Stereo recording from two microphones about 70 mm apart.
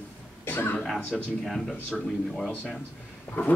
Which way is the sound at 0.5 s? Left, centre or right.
Left.